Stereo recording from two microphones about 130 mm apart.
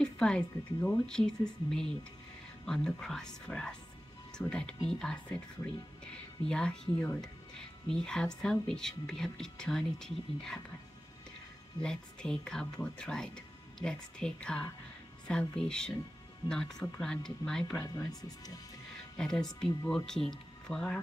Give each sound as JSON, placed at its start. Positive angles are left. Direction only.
{"t": 0.0, "sound": "speech", "side_deg": 5}
{"t": 6.4, "sound": "speech", "side_deg": 5}
{"t": 11.8, "sound": "speech", "side_deg": 5}
{"t": 17.8, "sound": "speech", "side_deg": 30}
{"t": 19.1, "sound": "speech", "side_deg": 5}